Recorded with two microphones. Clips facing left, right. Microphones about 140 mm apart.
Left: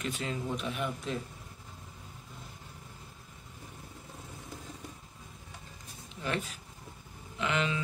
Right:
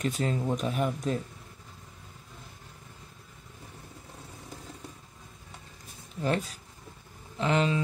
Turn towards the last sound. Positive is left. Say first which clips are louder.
# right 5 dB
turn(degrees=-35)  # may be behind; listen again after turning